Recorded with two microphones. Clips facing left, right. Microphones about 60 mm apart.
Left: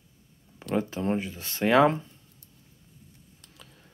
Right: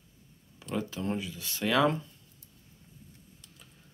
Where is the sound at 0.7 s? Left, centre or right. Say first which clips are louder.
Left 5 dB; left.